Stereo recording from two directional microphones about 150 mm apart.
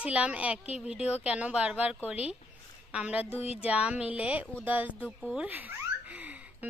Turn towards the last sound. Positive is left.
turn(degrees=-10)  # may be behind; listen again after turning